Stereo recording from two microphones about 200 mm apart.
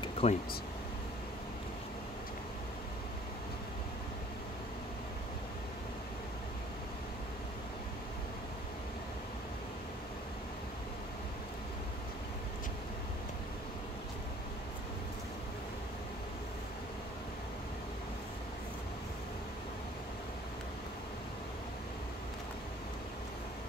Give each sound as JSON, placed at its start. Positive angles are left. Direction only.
{"t": 0.0, "sound": "air conditioning", "side_deg": 30}